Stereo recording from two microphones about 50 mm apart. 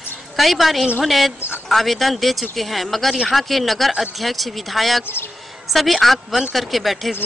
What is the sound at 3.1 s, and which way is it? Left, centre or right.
A child's voice, centre.